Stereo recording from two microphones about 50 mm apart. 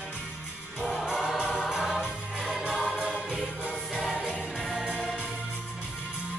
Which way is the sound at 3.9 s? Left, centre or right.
Centre.